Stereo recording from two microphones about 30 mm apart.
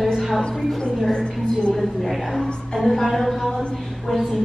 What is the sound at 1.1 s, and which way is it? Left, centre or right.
Speech, left.